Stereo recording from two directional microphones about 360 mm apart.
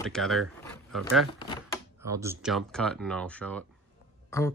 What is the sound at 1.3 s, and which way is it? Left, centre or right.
Speech, centre.